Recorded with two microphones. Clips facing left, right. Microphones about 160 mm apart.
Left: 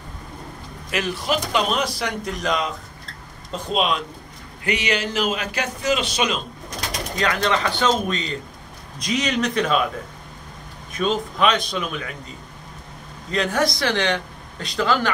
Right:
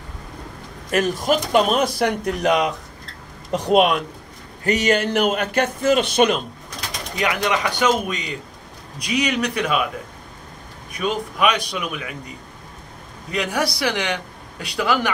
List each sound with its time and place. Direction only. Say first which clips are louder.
0.8 s a man's voice: right 5 dB; 45° right (ahead or behind)
4.6 s a man's voice: right 5 dB; 45° right (ahead or behind)
7.2 s a man's voice: even; 15° right (ahead or behind)
10.9 s a man's voice: left 1 dB; 10° right (ahead or behind)
13.3 s a man's voice: left 1 dB; 10° right (ahead or behind)